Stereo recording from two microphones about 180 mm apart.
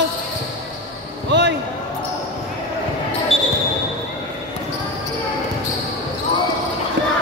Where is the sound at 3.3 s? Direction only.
Centre (ahead or behind).